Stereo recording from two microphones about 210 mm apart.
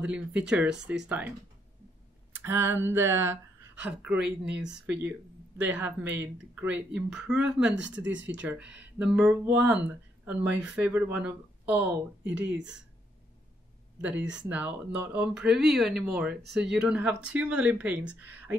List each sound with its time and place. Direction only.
0.0 s speech: 5° right (ahead or behind)
2.3 s speech: 10° right (ahead or behind)
5.6 s speech: 5° right (ahead or behind)
7.7 s speech: 60° right (ahead or behind)
8.4 s speech: 5° right (ahead or behind)
14.2 s speech: 60° right (ahead or behind)
14.5 s speech: 5° right (ahead or behind)
16.4 s speech: 55° right (ahead or behind)
16.7 s speech: 5° right (ahead or behind)